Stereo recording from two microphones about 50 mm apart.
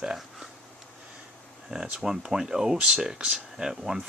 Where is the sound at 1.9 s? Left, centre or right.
Centre.